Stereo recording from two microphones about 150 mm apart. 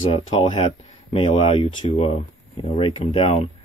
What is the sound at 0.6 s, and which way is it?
Speech, 40° left (ahead or behind).